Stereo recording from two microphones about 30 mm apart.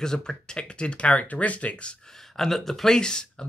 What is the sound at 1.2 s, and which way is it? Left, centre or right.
Speech, left.